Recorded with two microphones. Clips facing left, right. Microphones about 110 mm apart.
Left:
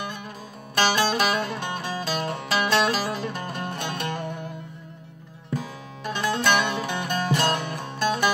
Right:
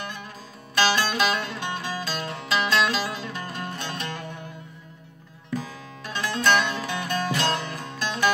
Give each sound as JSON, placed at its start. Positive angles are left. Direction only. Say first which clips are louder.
{"t": 0.7, "sound": "music", "louder": "left 1 dB", "side_deg": 50}
{"t": 6.0, "sound": "music", "louder": "even", "side_deg": 50}